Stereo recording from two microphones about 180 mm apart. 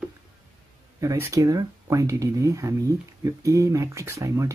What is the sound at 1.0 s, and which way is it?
Speech, 15° right (ahead or behind).